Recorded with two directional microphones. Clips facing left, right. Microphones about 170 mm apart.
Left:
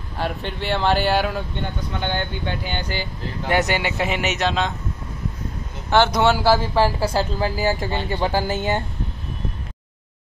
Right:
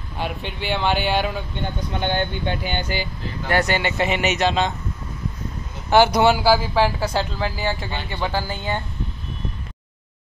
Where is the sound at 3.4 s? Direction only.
15° left (ahead or behind); by 4.7 s centre (ahead or behind).